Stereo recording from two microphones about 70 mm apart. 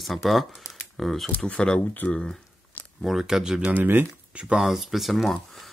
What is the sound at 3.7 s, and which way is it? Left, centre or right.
Speech, right.